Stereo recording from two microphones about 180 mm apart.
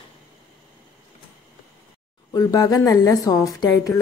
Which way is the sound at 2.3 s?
20° left (ahead or behind).